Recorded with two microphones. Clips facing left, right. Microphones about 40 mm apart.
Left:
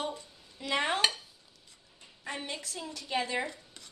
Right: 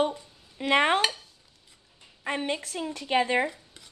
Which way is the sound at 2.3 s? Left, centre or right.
Right.